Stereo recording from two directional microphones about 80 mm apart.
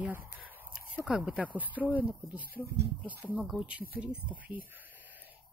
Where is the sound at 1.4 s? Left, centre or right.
Centre.